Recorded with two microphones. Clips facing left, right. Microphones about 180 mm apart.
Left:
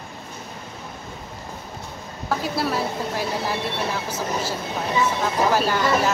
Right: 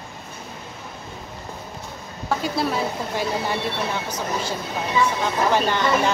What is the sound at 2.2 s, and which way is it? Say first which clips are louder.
Speech: right 1 dB; centre (ahead or behind).